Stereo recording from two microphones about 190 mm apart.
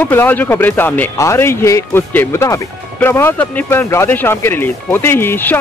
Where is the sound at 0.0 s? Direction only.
10° left (ahead or behind).